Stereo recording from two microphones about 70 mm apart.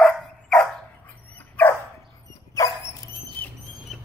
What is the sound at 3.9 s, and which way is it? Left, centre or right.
Duck, centre.